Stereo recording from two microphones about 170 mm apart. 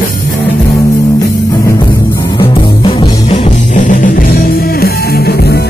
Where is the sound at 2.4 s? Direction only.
30° left (ahead or behind); by 5.6 s 70° left (ahead or behind).